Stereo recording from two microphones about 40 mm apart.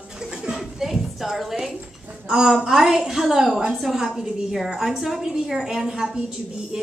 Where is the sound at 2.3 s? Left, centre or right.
Centre.